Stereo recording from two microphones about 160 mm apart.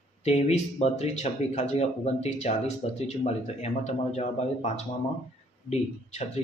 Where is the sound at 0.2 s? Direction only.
40° left (ahead or behind).